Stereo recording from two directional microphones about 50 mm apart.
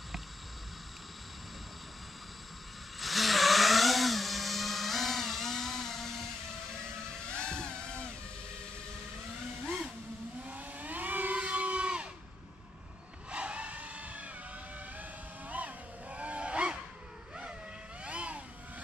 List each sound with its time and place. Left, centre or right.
3.0 s a sound: centre
7.2 s music: centre
10.4 s vehicle: right
13.3 s a sound: right
15.0 s vehicle: right
18.0 s vehicle: right